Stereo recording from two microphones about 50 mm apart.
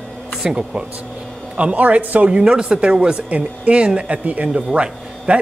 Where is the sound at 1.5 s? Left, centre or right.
Right.